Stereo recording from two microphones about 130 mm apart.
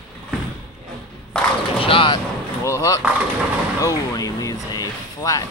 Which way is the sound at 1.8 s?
40° left (ahead or behind).